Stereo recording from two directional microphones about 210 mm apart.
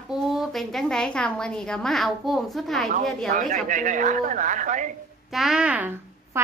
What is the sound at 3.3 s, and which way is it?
A woman's voice, 35° right (ahead or behind).